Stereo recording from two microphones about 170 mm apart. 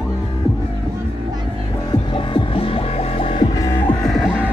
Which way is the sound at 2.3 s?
35° left (ahead or behind).